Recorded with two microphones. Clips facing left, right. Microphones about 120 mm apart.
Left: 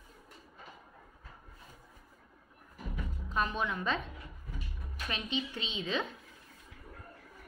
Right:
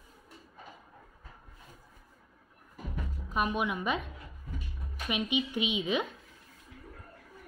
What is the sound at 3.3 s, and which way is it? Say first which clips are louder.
Speech: right 3 dB; 15° right (ahead or behind).